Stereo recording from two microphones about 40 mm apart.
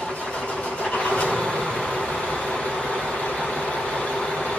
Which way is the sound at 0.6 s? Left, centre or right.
Left.